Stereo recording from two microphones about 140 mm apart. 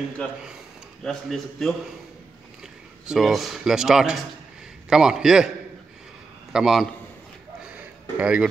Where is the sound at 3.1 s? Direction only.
Centre (ahead or behind).